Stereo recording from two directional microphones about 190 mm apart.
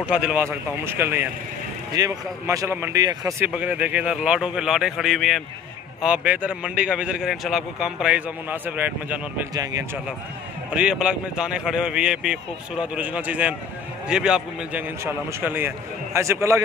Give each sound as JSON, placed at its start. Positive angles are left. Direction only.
{"t": 0.0, "sound": "a man's voice", "side_deg": -5}
{"t": 9.5, "sound": "speech", "side_deg": -20}
{"t": 10.7, "sound": "a man's voice", "side_deg": -5}